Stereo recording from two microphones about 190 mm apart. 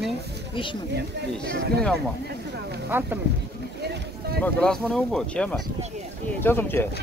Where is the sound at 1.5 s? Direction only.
60° right (ahead or behind).